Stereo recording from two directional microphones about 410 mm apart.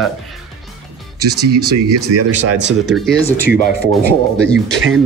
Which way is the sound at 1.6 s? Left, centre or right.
Right.